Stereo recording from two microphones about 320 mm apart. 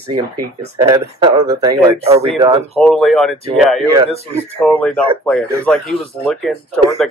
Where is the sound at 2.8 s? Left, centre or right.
Centre.